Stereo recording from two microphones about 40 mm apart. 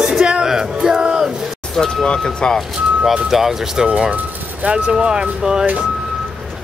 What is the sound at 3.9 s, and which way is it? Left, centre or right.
Speech, right.